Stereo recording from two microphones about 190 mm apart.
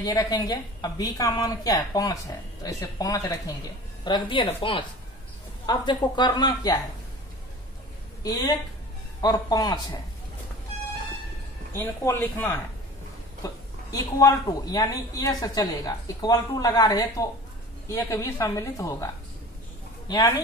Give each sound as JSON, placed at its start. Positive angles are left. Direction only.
{"t": 0.0, "sound": "a woman's voice", "side_deg": 20}
{"t": 8.2, "sound": "a woman's voice", "side_deg": 20}
{"t": 11.7, "sound": "a woman's voice", "side_deg": 15}
{"t": 13.9, "sound": "a woman's voice", "side_deg": 20}
{"t": 20.1, "sound": "speech", "side_deg": 20}